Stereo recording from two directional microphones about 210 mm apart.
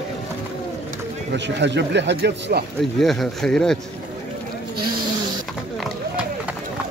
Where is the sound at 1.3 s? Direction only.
55° right (ahead or behind).